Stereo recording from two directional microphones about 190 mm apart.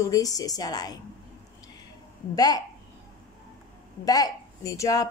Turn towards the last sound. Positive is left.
turn(degrees=20)  # may be behind; listen again after turning